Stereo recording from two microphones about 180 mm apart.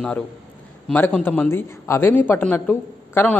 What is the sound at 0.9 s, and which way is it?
Speech, 10° left (ahead or behind).